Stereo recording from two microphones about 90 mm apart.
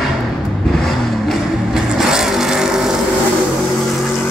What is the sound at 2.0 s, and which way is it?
Vehicle, 5° right (ahead or behind).